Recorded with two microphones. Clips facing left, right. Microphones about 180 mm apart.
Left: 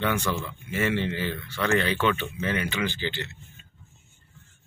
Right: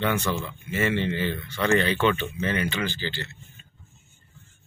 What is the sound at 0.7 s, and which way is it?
Speech, 10° left (ahead or behind).